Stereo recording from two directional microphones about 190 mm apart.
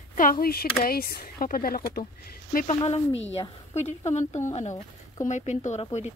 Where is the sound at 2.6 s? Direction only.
30° left (ahead or behind).